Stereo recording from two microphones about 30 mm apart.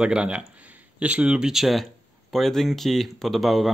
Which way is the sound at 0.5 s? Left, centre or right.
Right.